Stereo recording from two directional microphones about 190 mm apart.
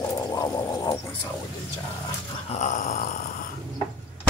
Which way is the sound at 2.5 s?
40° left (ahead or behind).